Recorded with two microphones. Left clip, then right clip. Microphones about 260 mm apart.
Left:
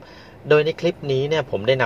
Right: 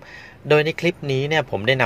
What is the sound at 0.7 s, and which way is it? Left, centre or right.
Speech, right.